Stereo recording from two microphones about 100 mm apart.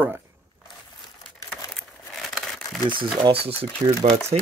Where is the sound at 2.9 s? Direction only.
55° right (ahead or behind).